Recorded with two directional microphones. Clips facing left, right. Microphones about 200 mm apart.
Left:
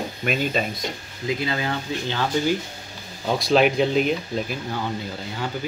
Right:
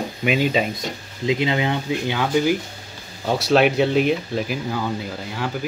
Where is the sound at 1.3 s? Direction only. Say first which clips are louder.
Right 5 dB; 20° right (ahead or behind).